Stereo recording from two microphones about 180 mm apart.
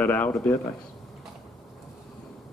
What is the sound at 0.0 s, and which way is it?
Speech, 10° left (ahead or behind).